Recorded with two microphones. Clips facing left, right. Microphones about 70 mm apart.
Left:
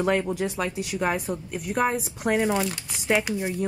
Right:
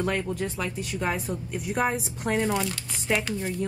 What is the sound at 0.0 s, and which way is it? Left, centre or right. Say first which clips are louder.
A woman's voice: left 4 dB; centre.